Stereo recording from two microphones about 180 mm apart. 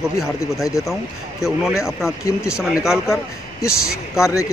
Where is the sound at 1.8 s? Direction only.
Centre (ahead or behind).